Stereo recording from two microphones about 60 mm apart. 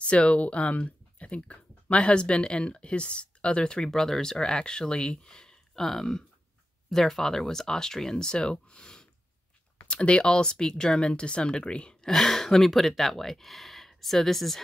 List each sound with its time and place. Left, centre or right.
0.0 s speech: centre